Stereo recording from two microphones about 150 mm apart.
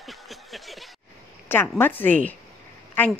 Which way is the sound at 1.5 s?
15° left (ahead or behind).